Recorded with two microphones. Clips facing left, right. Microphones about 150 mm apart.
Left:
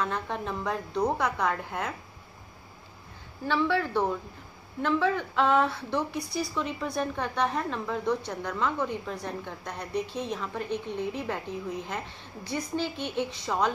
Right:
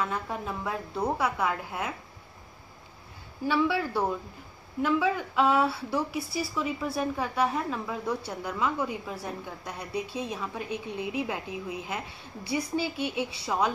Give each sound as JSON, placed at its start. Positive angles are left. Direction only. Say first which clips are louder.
{"t": 0.0, "sound": "a woman's voice", "louder": "left 1 dB", "side_deg": -5}
{"t": 3.4, "sound": "speech", "louder": "even", "side_deg": -10}